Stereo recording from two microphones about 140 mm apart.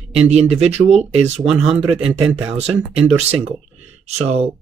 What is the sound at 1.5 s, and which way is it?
Speech, 5° right (ahead or behind).